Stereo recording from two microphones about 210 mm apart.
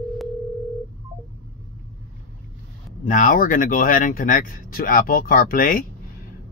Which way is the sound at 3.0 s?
40° left (ahead or behind).